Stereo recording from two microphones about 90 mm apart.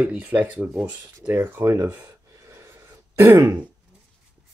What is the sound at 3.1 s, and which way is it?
Throat clearing, 20° right (ahead or behind).